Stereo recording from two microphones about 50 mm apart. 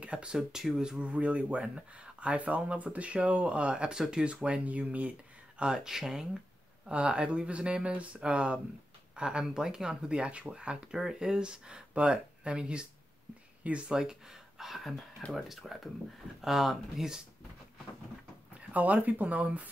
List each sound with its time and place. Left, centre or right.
0.0 s speech: right
0.4 s speech: centre
1.0 s speech: right
5.6 s speech: centre
6.9 s speech: right
11.0 s speech: centre
18.5 s speech: right